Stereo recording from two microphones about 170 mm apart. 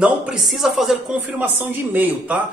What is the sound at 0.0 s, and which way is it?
A man's voice, 5° right (ahead or behind).